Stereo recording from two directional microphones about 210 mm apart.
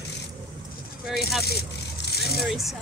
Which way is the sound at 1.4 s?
50° left (ahead or behind).